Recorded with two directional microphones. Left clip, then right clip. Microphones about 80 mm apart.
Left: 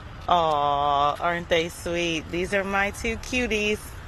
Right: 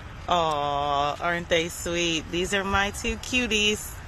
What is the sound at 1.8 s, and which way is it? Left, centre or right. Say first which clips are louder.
Speech: even; centre.